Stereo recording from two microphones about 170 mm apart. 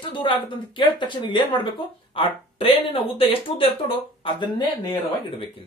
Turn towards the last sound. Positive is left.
turn(degrees=25)  # may be behind; listen again after turning